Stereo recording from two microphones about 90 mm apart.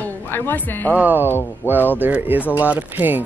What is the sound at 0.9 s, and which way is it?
Speech, 20° right (ahead or behind).